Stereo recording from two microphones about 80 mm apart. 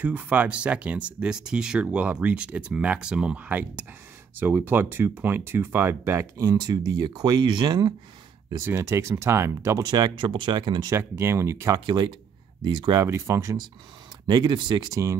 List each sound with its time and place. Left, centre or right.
0.0 s speech: centre; by 6.7 s right
6.7 s speech: right
8.5 s speech: right
9.8 s speech: right
10.9 s speech: right
11.7 s speech: right
13.0 s speech: right
14.2 s speech: right